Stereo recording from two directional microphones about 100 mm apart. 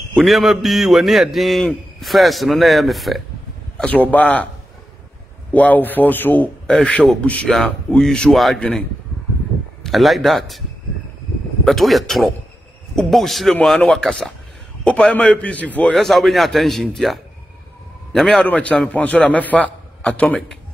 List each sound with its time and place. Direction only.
0.1 s a man's voice: centre (ahead or behind)
3.7 s a man's voice: 15° left (ahead or behind)
5.5 s a man's voice: 15° left (ahead or behind)
9.8 s a man's voice: centre (ahead or behind)
11.6 s a man's voice: centre (ahead or behind)
15.9 s a man's voice: centre (ahead or behind)